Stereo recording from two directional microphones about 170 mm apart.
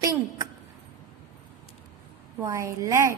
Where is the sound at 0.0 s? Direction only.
20° right (ahead or behind).